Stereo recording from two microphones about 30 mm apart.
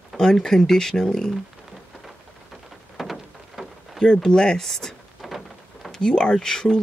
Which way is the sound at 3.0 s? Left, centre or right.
Centre.